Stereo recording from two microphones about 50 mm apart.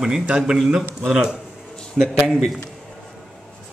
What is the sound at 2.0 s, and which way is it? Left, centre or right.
Speech, centre.